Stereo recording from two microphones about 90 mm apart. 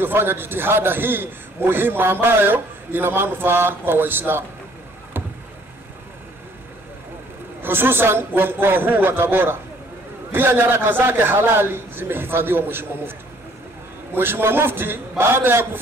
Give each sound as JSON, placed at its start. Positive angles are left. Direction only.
{"t": 0.0, "sound": "a man's voice", "side_deg": -25}
{"t": 7.6, "sound": "a man's voice", "side_deg": -25}
{"t": 14.1, "sound": "a man's voice", "side_deg": -25}